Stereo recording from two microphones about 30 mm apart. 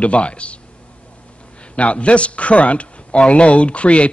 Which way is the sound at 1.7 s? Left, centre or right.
Left.